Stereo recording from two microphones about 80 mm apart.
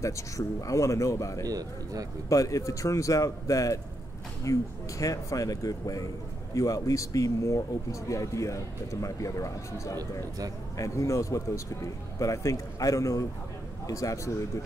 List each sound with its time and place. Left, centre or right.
0.0 s speech: left